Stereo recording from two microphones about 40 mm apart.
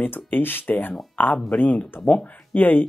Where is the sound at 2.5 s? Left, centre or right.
Left.